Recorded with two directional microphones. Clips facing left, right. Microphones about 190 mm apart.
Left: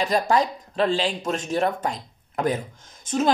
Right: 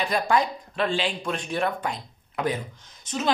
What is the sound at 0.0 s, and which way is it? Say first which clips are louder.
Speech: left 2 dB; 40° left (ahead or behind).